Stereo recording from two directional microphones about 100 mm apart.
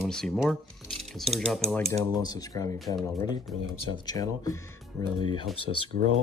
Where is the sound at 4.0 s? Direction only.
40° left (ahead or behind).